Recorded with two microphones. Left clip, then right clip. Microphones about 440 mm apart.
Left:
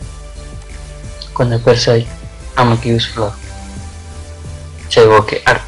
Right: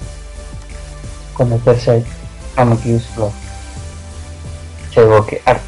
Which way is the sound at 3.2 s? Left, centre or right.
Centre.